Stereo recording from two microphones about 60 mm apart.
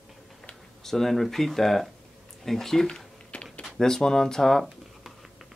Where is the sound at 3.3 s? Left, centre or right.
Centre.